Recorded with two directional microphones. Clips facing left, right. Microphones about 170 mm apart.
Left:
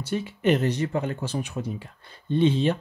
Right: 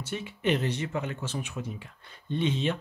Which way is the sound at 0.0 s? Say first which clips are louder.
Left 6 dB; 40° left (ahead or behind).